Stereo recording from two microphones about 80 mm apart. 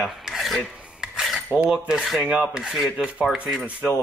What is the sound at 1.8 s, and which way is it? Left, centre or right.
Speech, centre.